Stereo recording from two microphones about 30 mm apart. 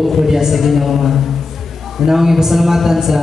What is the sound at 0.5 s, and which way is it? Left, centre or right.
A woman's voice, centre.